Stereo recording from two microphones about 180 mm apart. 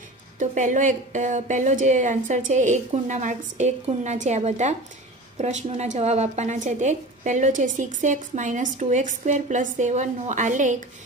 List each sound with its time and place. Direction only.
0.4 s speech: 45° right (ahead or behind)